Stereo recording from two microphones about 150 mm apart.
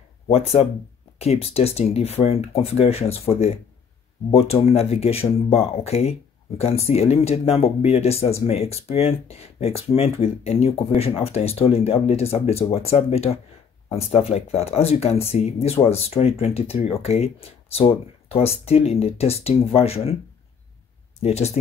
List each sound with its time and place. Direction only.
0.3 s speech: 45° left (ahead or behind)
21.2 s speech: 45° left (ahead or behind)